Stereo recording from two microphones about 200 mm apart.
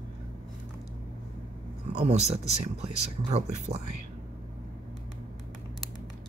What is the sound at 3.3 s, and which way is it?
Speech, 30° right (ahead or behind).